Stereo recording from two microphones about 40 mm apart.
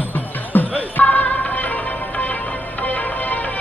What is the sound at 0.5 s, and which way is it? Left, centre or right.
Music, left.